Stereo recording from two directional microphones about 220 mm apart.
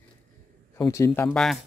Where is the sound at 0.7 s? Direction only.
15° left (ahead or behind).